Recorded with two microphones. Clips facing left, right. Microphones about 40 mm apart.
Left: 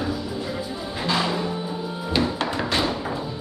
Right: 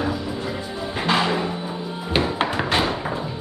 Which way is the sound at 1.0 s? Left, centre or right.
Right.